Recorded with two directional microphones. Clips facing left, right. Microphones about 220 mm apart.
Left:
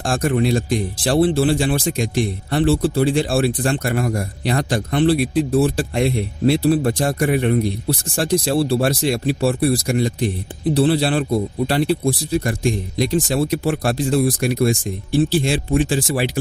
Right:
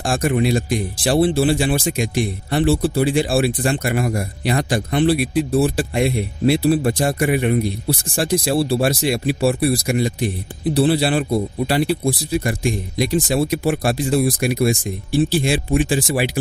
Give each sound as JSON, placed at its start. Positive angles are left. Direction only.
{"t": 0.0, "sound": "speech", "side_deg": -5}